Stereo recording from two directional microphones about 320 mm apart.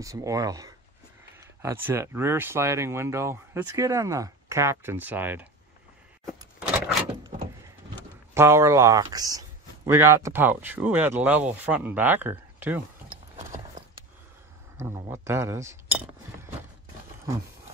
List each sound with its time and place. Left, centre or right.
0.0 s speech: centre
6.2 s a sound: centre
8.4 s speech: centre
13.4 s horse: centre
14.8 s chink: centre